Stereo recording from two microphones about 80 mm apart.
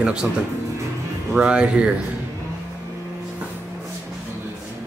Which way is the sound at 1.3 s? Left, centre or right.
Centre.